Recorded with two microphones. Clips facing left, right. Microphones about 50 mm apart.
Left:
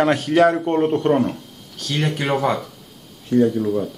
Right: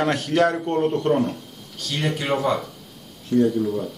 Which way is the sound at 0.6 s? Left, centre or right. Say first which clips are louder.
Left 3 dB; left.